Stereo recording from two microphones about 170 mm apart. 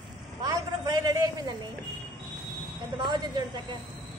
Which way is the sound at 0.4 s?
20° right (ahead or behind).